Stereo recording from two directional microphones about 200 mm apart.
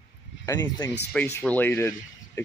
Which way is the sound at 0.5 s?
15° left (ahead or behind).